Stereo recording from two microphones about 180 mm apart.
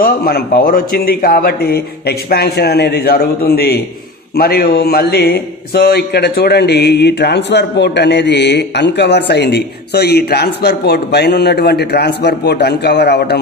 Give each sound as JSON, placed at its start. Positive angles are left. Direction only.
{"t": 0.0, "sound": "a man's voice", "side_deg": 55}